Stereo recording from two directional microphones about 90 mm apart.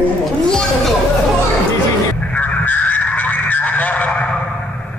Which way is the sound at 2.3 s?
20° left (ahead or behind).